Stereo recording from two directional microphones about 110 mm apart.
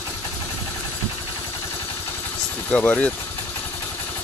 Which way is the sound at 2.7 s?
15° left (ahead or behind).